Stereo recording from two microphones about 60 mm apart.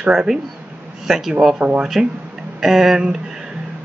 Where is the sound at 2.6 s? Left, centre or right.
Centre.